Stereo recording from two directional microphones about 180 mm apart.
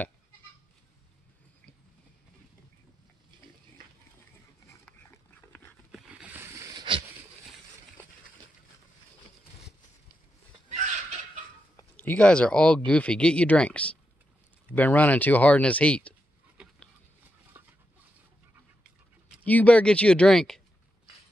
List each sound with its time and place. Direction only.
5.5 s dog: 10° left (ahead or behind)
6.0 s a sound: 10° right (ahead or behind); by 7.1 s 25° right (ahead or behind)
10.7 s fowl: 40° right (ahead or behind)
12.0 s speech: 5° left (ahead or behind)
17.6 s a sound: 10° right (ahead or behind)
19.4 s speech: 10° left (ahead or behind)